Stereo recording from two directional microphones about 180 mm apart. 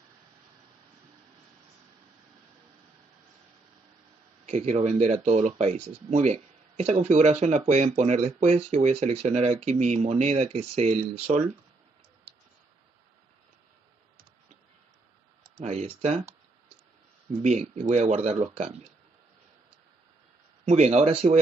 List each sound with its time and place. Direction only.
4.5 s speech: 40° right (ahead or behind)
15.6 s speech: 40° right (ahead or behind)
17.4 s speech: 40° right (ahead or behind)
20.6 s speech: 35° right (ahead or behind)